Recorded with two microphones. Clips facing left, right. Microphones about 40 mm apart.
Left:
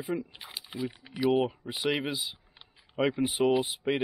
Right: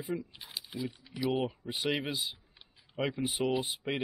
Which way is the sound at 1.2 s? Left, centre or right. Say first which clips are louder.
Left 6 dB; centre.